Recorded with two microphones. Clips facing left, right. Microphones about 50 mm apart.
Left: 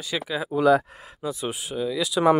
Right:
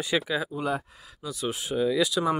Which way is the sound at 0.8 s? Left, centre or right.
Left.